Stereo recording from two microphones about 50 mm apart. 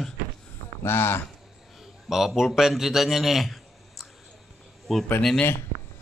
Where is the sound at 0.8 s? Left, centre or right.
Left.